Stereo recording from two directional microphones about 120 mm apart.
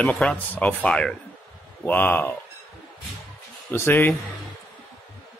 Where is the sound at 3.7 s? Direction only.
20° left (ahead or behind).